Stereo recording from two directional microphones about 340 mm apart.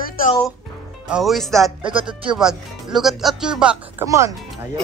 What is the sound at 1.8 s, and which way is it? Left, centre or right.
Speech, centre.